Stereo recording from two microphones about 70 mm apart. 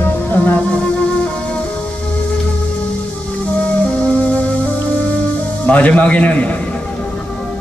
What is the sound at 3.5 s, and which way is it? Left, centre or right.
Music, centre.